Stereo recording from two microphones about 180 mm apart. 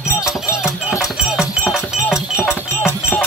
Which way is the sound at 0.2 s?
5° right (ahead or behind).